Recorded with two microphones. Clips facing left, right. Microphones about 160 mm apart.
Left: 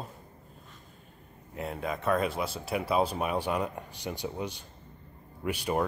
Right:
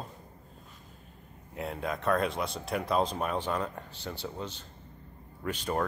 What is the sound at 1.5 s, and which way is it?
Speech, centre (ahead or behind).